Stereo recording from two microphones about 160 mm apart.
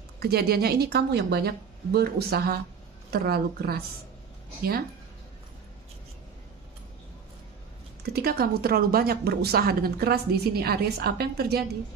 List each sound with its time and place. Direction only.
0.2 s a woman's voice: 75° right (ahead or behind)
8.0 s speech: 75° right (ahead or behind)